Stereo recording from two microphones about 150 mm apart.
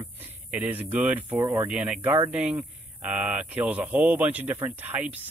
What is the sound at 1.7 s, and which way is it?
Speech, 5° right (ahead or behind).